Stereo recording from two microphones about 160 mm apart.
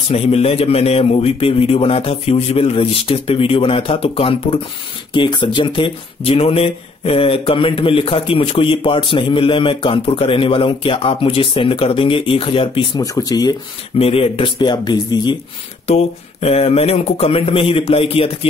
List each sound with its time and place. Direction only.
0.1 s speech: 40° left (ahead or behind)
13.0 s speech: 20° left (ahead or behind)
13.9 s speech: 35° left (ahead or behind)
15.9 s speech: 40° left (ahead or behind)